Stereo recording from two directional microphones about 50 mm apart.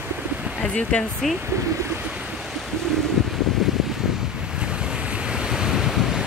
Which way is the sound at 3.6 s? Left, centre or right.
Centre.